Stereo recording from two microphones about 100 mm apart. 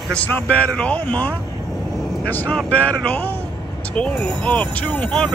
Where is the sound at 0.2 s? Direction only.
10° left (ahead or behind).